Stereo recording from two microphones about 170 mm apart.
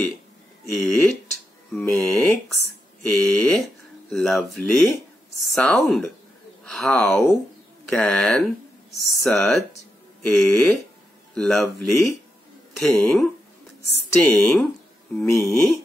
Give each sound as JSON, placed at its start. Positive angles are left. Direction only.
{"t": 0.7, "sound": "speech", "side_deg": 0}